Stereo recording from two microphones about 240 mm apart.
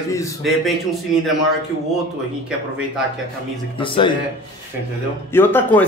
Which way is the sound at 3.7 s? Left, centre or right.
Left.